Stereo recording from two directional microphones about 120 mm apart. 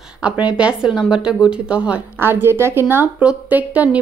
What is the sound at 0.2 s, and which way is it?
Speech, 10° right (ahead or behind).